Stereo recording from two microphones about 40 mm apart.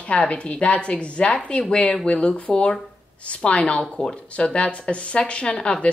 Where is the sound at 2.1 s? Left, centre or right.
Left.